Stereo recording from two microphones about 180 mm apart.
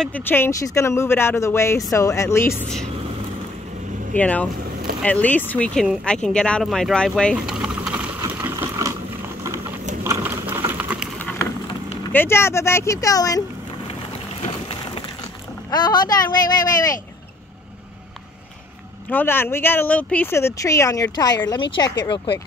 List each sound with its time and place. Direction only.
0.0 s speech: 10° left (ahead or behind)
4.1 s speech: 10° left (ahead or behind)
8.5 s ratchet: 15° right (ahead or behind)
9.4 s a sound: 15° right (ahead or behind)
11.1 s a sound: 10° left (ahead or behind)
12.1 s speech: 10° left (ahead or behind)
14.4 s a sound: 30° left (ahead or behind)
15.7 s speech: 25° left (ahead or behind)
19.0 s speech: 10° left (ahead or behind)